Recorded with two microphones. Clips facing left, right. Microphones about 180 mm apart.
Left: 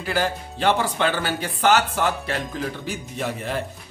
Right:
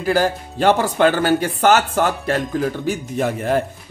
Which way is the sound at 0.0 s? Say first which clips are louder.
Right 6 dB; 45° right (ahead or behind).